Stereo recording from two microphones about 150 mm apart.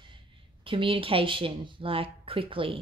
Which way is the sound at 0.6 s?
35° right (ahead or behind).